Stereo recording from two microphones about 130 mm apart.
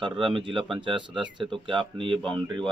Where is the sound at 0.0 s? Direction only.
40° right (ahead or behind).